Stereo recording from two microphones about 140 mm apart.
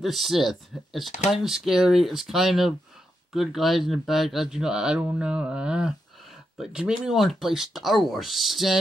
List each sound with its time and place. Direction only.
0.0 s speech: centre (ahead or behind)